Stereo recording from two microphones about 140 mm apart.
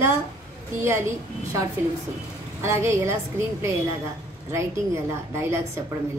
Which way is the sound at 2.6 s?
20° right (ahead or behind).